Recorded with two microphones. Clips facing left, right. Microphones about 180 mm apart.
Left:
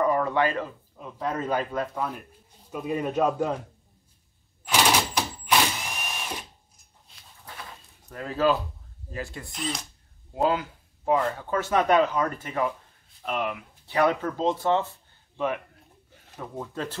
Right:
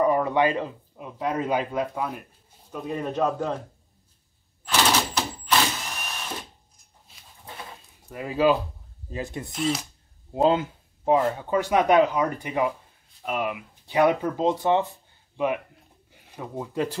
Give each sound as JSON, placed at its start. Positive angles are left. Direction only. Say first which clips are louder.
{"t": 0.0, "sound": "a man's voice", "louder": "right 2 dB", "side_deg": -15}
{"t": 2.7, "sound": "speech", "louder": "left 2 dB", "side_deg": 5}
{"t": 4.6, "sound": "a sound", "louder": "even", "side_deg": 10}
{"t": 7.1, "sound": "a sound", "louder": "right 1 dB", "side_deg": -5}
{"t": 8.0, "sound": "speech", "louder": "right 3 dB", "side_deg": -10}
{"t": 9.5, "sound": "speech", "louder": "right 9 dB", "side_deg": -5}
{"t": 10.3, "sound": "speech", "louder": "right 4 dB", "side_deg": -25}